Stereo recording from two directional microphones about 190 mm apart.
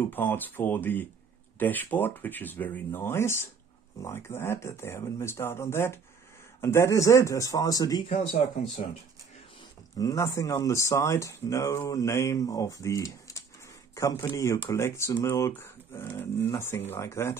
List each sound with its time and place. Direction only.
0.1 s speech: 10° left (ahead or behind)
8.1 s speech: 35° left (ahead or behind)
9.9 s speech: 15° left (ahead or behind)